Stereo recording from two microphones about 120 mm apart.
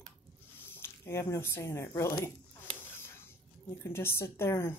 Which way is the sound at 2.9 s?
20° left (ahead or behind).